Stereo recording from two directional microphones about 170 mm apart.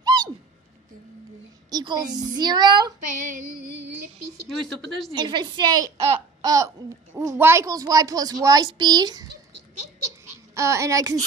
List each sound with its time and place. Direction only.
0.0 s a sound: 25° right (ahead or behind)
1.7 s a child's voice: 25° right (ahead or behind)
4.5 s speech: centre (ahead or behind)
5.1 s a child's voice: 25° right (ahead or behind)
10.5 s a child's voice: 20° right (ahead or behind)